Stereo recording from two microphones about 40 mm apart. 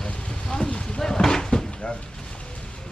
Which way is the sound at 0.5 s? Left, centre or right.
Centre.